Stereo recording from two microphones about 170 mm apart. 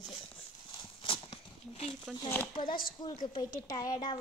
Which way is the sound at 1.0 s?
30° left (ahead or behind).